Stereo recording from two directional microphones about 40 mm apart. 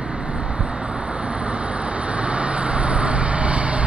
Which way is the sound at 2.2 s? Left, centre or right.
Right.